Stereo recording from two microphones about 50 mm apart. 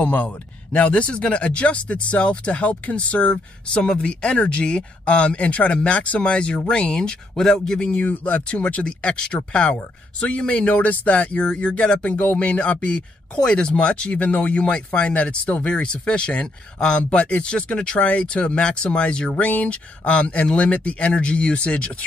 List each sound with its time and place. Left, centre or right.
0.0 s speech: left
7.9 s speech: left